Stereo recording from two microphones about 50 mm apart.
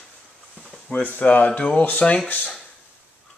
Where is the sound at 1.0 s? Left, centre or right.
Left.